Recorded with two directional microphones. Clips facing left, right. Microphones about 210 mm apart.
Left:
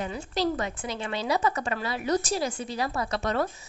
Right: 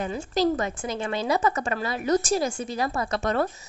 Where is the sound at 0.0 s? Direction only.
45° right (ahead or behind).